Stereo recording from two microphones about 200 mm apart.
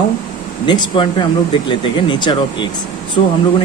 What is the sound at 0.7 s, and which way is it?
Speech, 25° left (ahead or behind).